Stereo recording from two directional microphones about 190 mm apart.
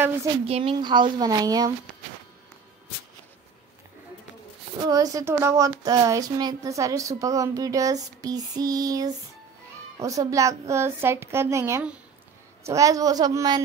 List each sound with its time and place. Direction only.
0.5 s a woman's voice: 30° right (ahead or behind)
4.8 s speech: 20° right (ahead or behind)